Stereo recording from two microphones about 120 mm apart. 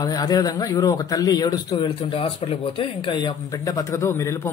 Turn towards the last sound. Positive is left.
turn(degrees=20)  # may be behind; listen again after turning